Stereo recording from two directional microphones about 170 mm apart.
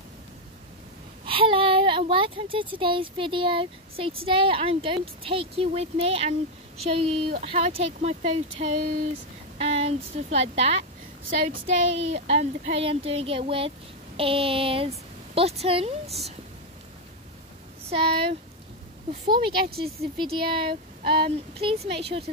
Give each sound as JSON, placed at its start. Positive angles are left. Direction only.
{"t": 1.2, "sound": "a woman's voice", "side_deg": -30}
{"t": 12.1, "sound": "a woman's voice", "side_deg": -40}
{"t": 17.8, "sound": "speech", "side_deg": -35}